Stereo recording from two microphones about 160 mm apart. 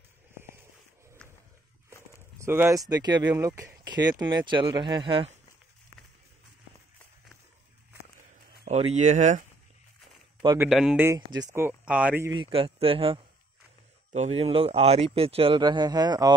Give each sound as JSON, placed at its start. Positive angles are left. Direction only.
{"t": 2.3, "sound": "speech", "side_deg": -15}
{"t": 8.6, "sound": "speech", "side_deg": -45}
{"t": 10.7, "sound": "speech", "side_deg": -5}
{"t": 11.1, "sound": "speech", "side_deg": -25}
{"t": 11.6, "sound": "speech", "side_deg": -5}
{"t": 12.3, "sound": "speech", "side_deg": -30}